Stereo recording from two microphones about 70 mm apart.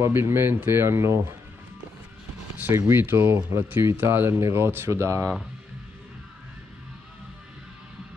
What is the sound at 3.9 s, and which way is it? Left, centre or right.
Speech, right.